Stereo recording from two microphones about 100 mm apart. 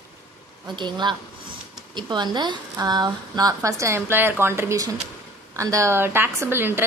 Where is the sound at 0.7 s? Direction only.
50° right (ahead or behind).